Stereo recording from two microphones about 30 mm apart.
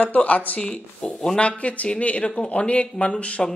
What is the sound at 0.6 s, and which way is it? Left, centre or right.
Speech, left.